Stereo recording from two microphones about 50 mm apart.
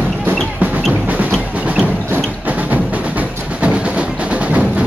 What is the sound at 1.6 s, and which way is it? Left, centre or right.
Music, right.